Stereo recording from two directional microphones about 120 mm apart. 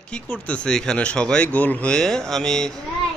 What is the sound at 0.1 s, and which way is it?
Speech, 10° left (ahead or behind).